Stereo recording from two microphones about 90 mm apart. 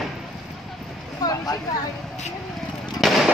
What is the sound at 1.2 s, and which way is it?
Speech, 45° left (ahead or behind).